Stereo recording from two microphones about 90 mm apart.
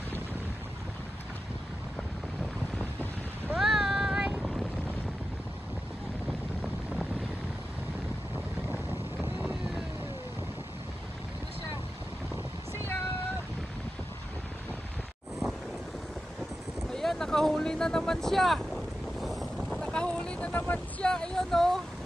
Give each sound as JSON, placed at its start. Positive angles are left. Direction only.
{"t": 3.5, "sound": "boat", "side_deg": -5}
{"t": 4.4, "sound": "vehicle", "side_deg": 0}
{"t": 8.6, "sound": "boat", "side_deg": -20}
{"t": 16.9, "sound": "vehicle", "side_deg": 5}
{"t": 21.1, "sound": "a sound", "side_deg": 5}